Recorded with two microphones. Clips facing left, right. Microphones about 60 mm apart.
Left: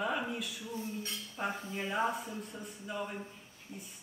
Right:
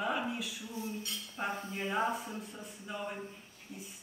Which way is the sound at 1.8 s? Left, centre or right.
Right.